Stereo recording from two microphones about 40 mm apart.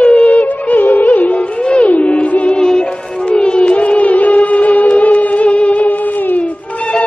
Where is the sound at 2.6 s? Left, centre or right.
Left.